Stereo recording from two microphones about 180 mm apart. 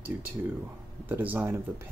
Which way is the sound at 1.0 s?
10° right (ahead or behind).